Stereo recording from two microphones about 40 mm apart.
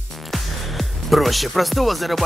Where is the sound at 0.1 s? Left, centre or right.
Centre.